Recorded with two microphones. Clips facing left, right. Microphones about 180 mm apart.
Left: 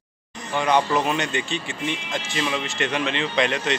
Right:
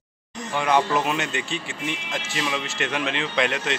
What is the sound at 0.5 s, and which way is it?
Speech, 5° right (ahead or behind).